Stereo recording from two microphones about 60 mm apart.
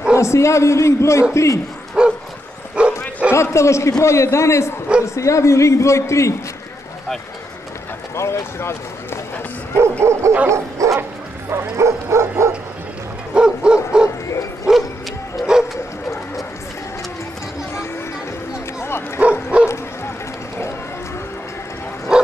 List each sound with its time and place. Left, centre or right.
0.1 s a man's voice: left
2.0 s bow-wow: centre
3.3 s a man's voice: left
8.2 s speech: left
9.8 s bow-wow: right
10.5 s dog: right
13.3 s bow-wow: centre
15.4 s bow-wow: centre
18.8 s bow-wow: left
19.5 s bow-wow: right
22.1 s bow-wow: centre